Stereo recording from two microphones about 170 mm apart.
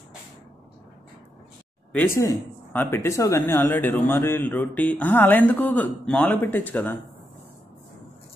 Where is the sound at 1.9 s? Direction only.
15° left (ahead or behind).